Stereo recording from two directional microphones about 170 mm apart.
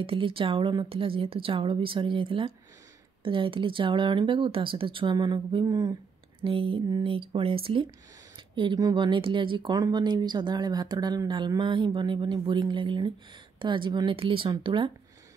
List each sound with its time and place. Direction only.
0.0 s a woman's voice: 30° right (ahead or behind)